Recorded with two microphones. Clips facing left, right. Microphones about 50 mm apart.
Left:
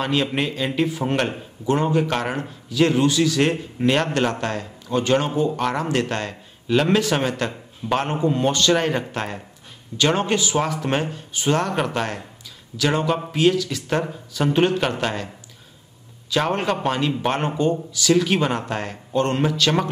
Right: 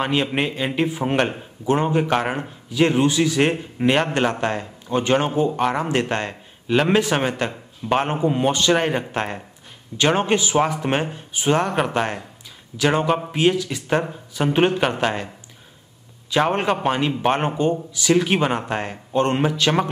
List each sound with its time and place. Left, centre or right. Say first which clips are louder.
0.0 s a man's voice: right 1 dB; right
16.3 s a man's voice: right 2 dB; right